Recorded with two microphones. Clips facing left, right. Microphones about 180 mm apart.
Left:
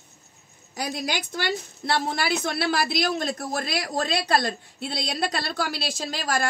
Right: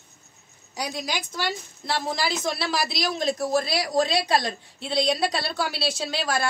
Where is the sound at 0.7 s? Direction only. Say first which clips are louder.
Left 1 dB; 55° left (ahead or behind).